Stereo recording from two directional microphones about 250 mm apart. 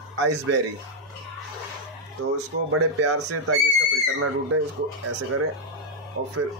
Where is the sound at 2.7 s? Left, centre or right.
Right.